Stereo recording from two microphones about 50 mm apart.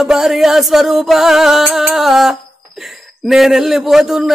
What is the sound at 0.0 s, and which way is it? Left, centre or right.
A man's voice, centre.